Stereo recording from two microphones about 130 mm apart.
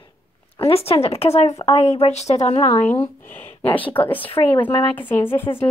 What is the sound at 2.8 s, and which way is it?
A woman's voice, 15° left (ahead or behind).